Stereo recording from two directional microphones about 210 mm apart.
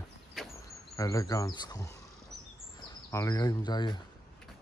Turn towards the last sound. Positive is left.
turn(degrees=20)  # may be behind; listen again after turning